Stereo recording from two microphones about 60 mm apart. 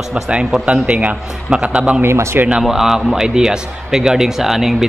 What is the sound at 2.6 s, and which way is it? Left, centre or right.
A man's voice, centre.